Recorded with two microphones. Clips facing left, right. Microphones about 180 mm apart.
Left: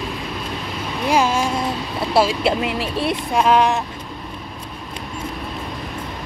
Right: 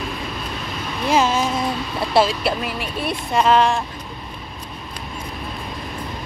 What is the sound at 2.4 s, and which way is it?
Speech, 25° left (ahead or behind).